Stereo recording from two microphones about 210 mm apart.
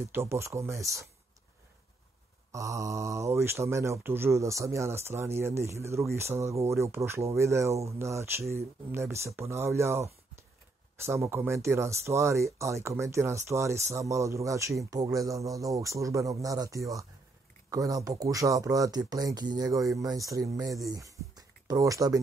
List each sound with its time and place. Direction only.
0.1 s speech: 10° right (ahead or behind)
2.5 s speech: 15° right (ahead or behind)